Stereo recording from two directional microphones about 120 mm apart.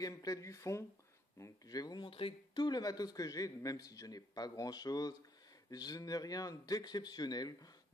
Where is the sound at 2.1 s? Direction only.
50° left (ahead or behind).